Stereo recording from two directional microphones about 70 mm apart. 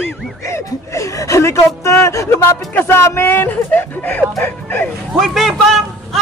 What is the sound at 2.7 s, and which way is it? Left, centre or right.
A man's voice, left.